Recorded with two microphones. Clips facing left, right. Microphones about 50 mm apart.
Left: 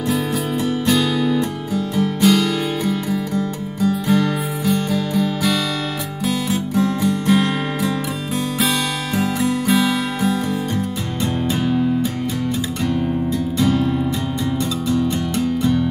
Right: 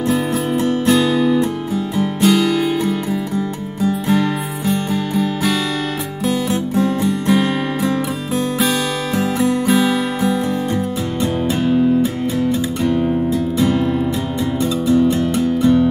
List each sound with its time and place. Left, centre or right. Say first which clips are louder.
0.8 s music: right 3 dB; centre
9.2 s music: right 3 dB; centre
11.4 s music: right 4 dB; centre